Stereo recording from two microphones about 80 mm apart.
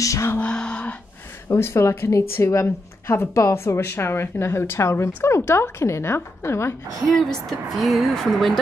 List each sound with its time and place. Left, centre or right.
0.0 s speech: left
0.4 s a sound: centre
1.5 s speech: left
7.2 s a woman's voice: centre